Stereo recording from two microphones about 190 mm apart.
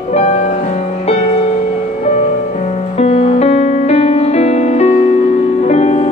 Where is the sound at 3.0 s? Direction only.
30° left (ahead or behind).